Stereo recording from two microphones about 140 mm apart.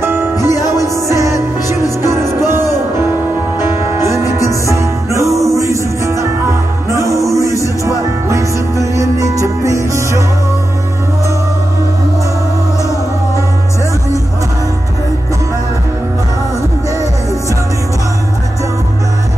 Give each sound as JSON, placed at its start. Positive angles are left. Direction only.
{"t": 0.0, "sound": "music", "side_deg": -15}
{"t": 0.6, "sound": "music", "side_deg": 25}
{"t": 1.0, "sound": "music", "side_deg": -20}